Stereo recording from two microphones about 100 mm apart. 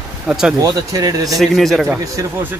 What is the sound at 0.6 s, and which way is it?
Speech, 40° right (ahead or behind).